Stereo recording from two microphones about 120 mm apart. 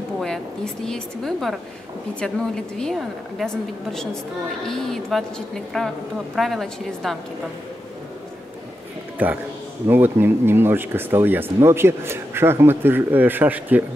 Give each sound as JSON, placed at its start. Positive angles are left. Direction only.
{"t": 0.8, "sound": "speech", "side_deg": 5}
{"t": 9.2, "sound": "speech", "side_deg": -15}